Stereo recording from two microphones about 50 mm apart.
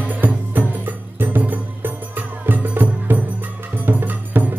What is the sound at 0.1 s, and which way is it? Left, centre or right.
Music, right.